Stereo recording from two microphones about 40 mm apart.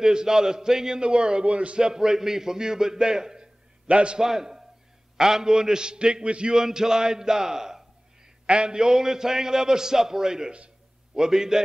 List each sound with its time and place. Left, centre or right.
0.0 s a man's voice: centre
1.8 s a man's voice: centre
4.2 s a man's voice: centre
6.5 s a man's voice: centre
8.5 s a man's voice: right